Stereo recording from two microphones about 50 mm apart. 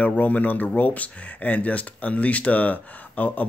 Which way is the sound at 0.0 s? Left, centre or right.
Left.